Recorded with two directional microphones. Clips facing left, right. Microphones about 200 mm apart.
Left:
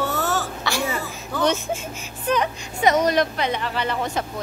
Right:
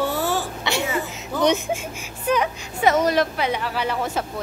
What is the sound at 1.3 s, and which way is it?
A woman's voice, 15° right (ahead or behind).